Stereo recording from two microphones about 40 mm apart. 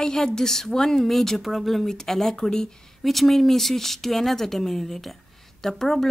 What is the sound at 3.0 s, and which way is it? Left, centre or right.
Speech, centre.